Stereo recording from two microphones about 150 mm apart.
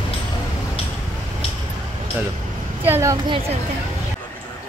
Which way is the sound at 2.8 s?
15° right (ahead or behind).